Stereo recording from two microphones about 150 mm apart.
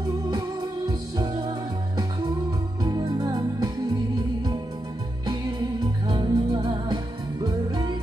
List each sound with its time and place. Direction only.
0.3 s music: 25° right (ahead or behind)
2.8 s music: 25° right (ahead or behind)
6.0 s music: 30° right (ahead or behind)